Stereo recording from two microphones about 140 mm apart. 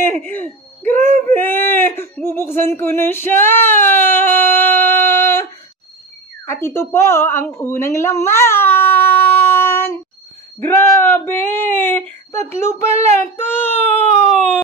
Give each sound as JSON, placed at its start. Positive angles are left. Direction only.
{"t": 0.1, "sound": "a woman's voice", "side_deg": 15}
{"t": 0.8, "sound": "a sound", "side_deg": -60}
{"t": 1.2, "sound": "a woman's voice", "side_deg": 15}
{"t": 12.6, "sound": "speech", "side_deg": -50}
{"t": 13.2, "sound": "a woman's voice", "side_deg": 15}